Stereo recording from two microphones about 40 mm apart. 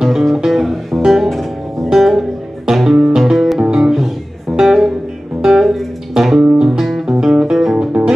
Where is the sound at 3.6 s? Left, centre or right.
Centre.